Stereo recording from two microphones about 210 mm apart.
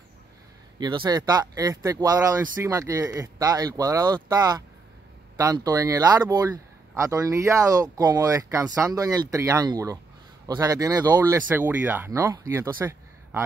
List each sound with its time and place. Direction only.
0.7 s speech: 20° right (ahead or behind)